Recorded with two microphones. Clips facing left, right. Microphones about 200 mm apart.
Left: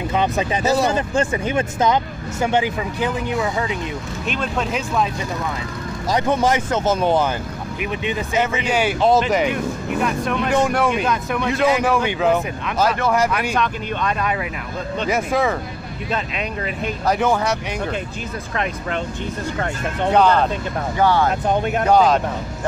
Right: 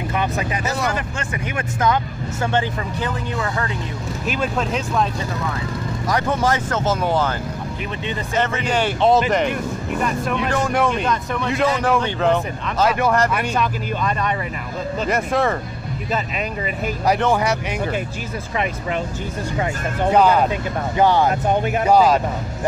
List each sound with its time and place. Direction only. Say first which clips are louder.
0.1 s speech: left 4 dB; 20° left (ahead or behind)
2.4 s speech: left 2 dB; 10° left (ahead or behind)
4.3 s speech: right 1 dB; centre (ahead or behind)
6.0 s speech: left 2 dB; 20° left (ahead or behind); by 17.7 s 10° right (ahead or behind)
19.6 s speech: right 1 dB; 5° right (ahead or behind)
21.0 s speech: right 1 dB; 15° right (ahead or behind)
21.3 s speech: even; 5° right (ahead or behind)